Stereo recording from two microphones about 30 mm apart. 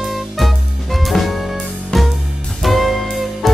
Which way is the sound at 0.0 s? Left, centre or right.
Centre.